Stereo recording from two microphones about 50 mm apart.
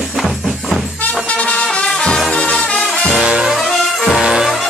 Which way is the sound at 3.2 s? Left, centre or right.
Centre.